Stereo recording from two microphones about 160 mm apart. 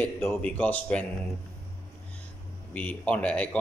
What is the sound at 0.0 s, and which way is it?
A man's voice, 10° left (ahead or behind).